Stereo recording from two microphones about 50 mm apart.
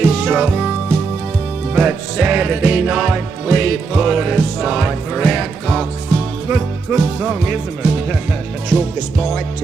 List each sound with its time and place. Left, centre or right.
0.0 s music: centre
1.8 s music: right; by 5.9 s centre
6.9 s music: right
8.7 s music: centre